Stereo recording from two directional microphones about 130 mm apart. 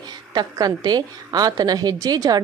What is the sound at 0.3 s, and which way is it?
A woman's voice, 30° right (ahead or behind).